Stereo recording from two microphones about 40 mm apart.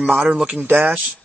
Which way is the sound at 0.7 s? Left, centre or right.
Right.